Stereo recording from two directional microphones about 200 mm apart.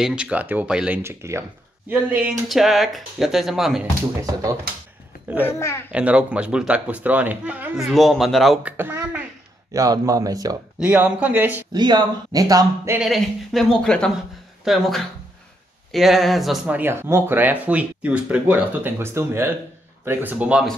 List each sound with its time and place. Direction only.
0.0 s speech: 5° right (ahead or behind)
4.2 s speech: 15° right (ahead or behind)
5.4 s a child's voice: 15° left (ahead or behind)
5.9 s speech: 5° right (ahead or behind)
10.8 s speech: 5° right (ahead or behind)
11.7 s speech: 20° right (ahead or behind)
13.0 s speech: centre (ahead or behind)